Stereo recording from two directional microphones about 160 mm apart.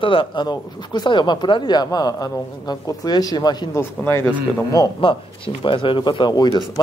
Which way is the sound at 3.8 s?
15° left (ahead or behind).